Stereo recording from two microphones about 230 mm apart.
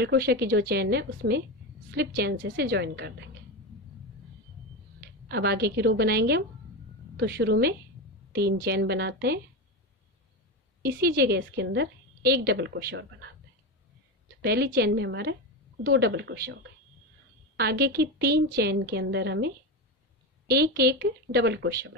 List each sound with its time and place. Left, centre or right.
0.0 s a woman's voice: right
5.3 s a woman's voice: right
10.8 s a woman's voice: right
14.4 s a woman's voice: right
17.6 s a woman's voice: right